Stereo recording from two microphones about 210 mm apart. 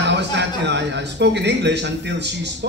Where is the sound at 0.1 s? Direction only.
55° right (ahead or behind).